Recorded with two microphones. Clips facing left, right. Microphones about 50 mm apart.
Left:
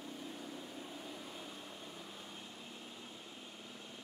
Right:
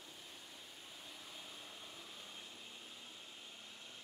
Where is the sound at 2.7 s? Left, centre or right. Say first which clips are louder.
Left 4 dB; left.